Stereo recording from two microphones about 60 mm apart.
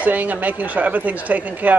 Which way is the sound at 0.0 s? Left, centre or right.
Right.